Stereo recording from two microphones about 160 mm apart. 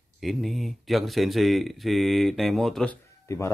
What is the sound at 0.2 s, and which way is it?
Speech, centre (ahead or behind).